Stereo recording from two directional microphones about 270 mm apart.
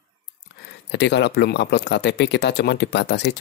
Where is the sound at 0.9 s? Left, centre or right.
Left.